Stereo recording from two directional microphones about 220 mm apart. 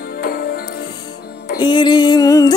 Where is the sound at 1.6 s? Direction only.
20° left (ahead or behind).